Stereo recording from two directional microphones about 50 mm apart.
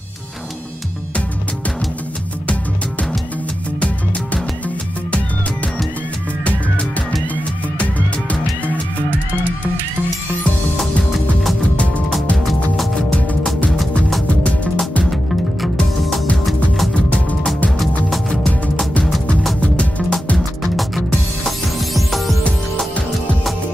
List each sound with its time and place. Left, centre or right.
13.7 s music: centre
14.2 s music: left
16.4 s music: centre
16.9 s music: left
19.6 s music: left
20.3 s music: centre